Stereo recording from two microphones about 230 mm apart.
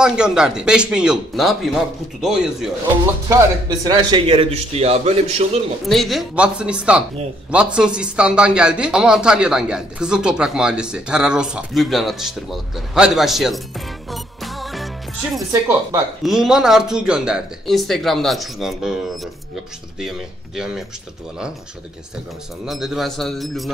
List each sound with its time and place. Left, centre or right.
0.0 s speech: centre
3.3 s speech: centre
5.9 s speech: centre
22.7 s speech: centre